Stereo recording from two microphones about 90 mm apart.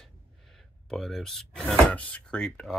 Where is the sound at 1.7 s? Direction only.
15° left (ahead or behind).